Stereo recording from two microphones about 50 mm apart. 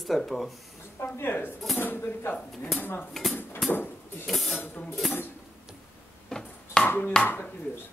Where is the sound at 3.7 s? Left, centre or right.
Left.